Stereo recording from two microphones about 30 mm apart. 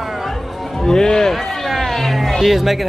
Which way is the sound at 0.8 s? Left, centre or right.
Left.